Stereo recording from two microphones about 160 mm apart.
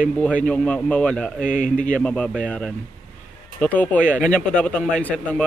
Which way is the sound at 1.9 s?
5° left (ahead or behind).